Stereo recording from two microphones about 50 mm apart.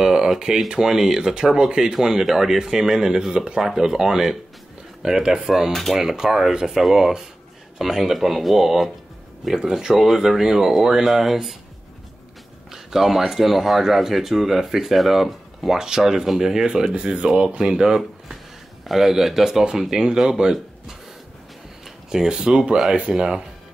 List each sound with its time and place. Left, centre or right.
0.0 s speech: centre
5.7 s speech: centre
5.9 s speech: centre
12.7 s speech: centre
22.1 s speech: centre